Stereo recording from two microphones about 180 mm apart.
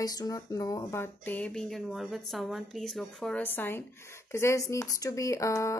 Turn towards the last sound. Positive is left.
turn(degrees=15)  # may be behind; listen again after turning